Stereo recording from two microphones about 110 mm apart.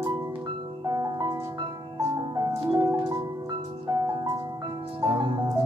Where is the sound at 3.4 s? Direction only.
40° right (ahead or behind).